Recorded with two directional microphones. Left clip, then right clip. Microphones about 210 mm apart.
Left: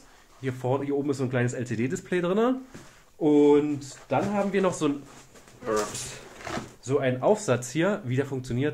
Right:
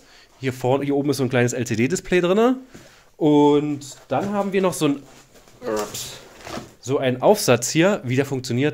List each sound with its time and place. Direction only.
0.4 s speech: 45° right (ahead or behind)